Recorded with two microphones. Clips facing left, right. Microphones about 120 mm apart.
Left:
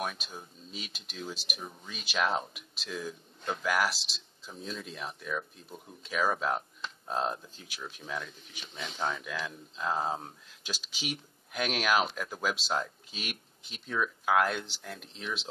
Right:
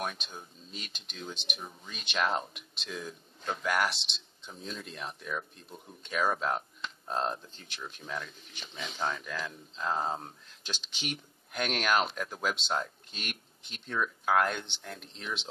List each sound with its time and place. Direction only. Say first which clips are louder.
0.0 s speech: left 1 dB; centre (ahead or behind)